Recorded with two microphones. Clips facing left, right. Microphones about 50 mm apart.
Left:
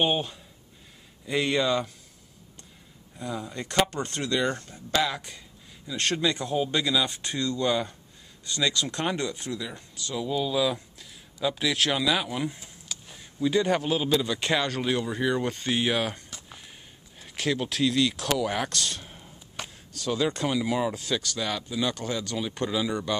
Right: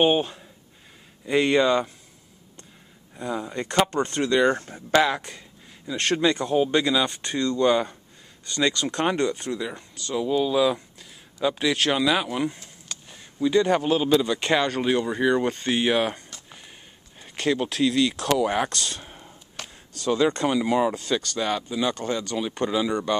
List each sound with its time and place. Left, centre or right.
0.0 s a man's voice: centre
3.2 s a man's voice: centre
4.6 s speech: right
5.9 s a man's voice: centre
9.5 s speech: right
9.8 s speech: centre
10.1 s a man's voice: centre
12.5 s a sound: centre
13.7 s a man's voice: centre
17.2 s speech: centre
19.5 s a sound: centre
20.5 s speech: centre